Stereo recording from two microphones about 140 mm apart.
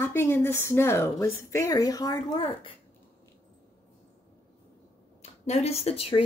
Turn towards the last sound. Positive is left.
turn(degrees=45)  # may be behind; listen again after turning